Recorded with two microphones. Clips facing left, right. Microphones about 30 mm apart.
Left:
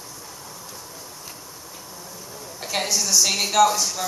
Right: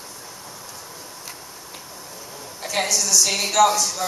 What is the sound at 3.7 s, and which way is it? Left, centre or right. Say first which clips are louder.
Speech: right 2 dB; centre.